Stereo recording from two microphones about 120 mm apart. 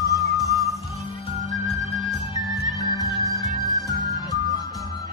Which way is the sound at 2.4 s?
30° left (ahead or behind).